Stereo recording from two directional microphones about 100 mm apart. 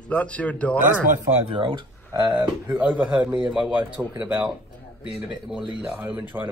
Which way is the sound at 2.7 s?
15° right (ahead or behind).